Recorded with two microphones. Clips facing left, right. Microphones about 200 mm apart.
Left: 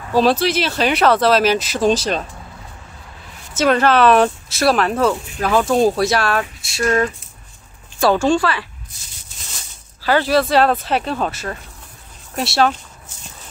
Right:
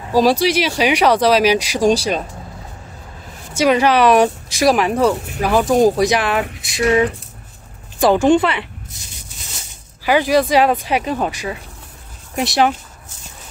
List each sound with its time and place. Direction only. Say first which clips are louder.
0.1 s speech: right 1 dB; 10° right (ahead or behind)
3.5 s speech: right 1 dB; 10° right (ahead or behind)
8.0 s speech: right 3 dB; 15° right (ahead or behind)
10.0 s speech: right 1 dB; 15° right (ahead or behind)